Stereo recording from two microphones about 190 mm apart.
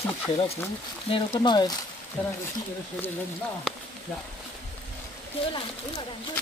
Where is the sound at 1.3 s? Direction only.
25° left (ahead or behind).